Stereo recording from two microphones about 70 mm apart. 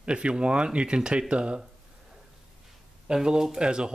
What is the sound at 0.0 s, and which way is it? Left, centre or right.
Speech, centre.